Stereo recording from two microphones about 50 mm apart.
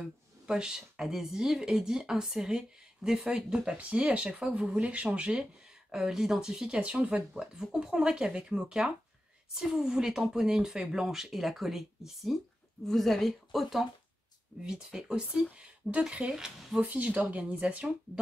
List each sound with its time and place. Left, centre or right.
0.5 s speech: centre
3.7 s speech: right
5.3 s speech: centre
6.8 s a woman's voice: right; by 13.8 s centre
14.6 s speech: centre
16.8 s speech: right